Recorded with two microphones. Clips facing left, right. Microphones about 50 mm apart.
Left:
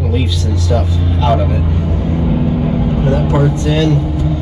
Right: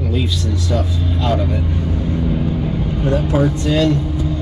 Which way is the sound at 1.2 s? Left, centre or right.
Left.